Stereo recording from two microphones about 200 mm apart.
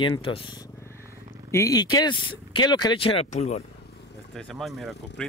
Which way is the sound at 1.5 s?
15° left (ahead or behind).